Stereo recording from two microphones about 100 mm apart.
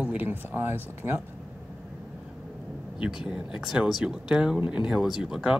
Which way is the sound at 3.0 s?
5° right (ahead or behind).